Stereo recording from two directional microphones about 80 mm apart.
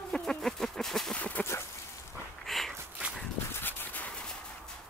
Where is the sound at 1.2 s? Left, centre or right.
Centre.